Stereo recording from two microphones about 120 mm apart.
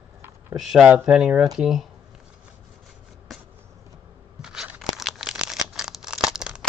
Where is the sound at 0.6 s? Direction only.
5° right (ahead or behind).